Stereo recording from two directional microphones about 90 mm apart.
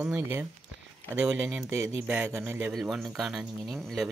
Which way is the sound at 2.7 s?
Centre (ahead or behind).